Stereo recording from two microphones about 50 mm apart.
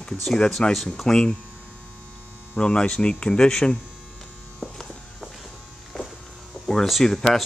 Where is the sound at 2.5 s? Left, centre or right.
Left.